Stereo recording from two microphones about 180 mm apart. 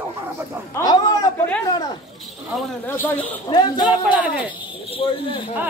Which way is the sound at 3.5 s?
25° left (ahead or behind).